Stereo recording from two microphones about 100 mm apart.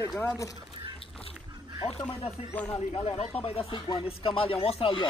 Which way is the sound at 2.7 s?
85° left.